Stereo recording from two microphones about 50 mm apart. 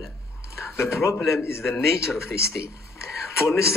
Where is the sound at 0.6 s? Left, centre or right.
Left.